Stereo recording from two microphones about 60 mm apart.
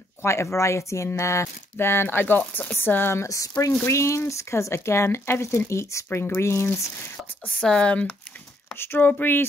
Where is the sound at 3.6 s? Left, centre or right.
Left.